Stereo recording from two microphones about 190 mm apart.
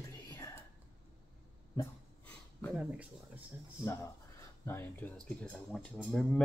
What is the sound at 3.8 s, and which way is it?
Speech, 15° left (ahead or behind).